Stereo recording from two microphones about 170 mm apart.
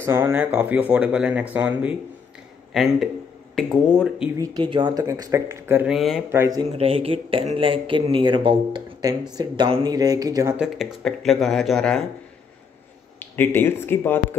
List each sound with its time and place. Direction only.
0.0 s speech: 15° right (ahead or behind)
4.4 s speech: 25° right (ahead or behind); by 6.2 s centre (ahead or behind)
6.3 s speech: 20° right (ahead or behind)
6.8 s speech: 35° right (ahead or behind)
10.5 s speech: 5° right (ahead or behind)
13.2 s speech: 10° left (ahead or behind)